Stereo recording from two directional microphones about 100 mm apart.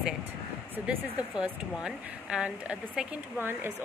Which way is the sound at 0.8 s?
10° right (ahead or behind).